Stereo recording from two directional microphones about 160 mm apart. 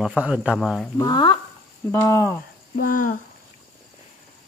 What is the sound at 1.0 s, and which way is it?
Speech, 25° left (ahead or behind).